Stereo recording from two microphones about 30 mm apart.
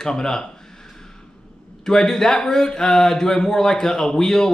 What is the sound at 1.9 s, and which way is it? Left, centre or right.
Speech, centre.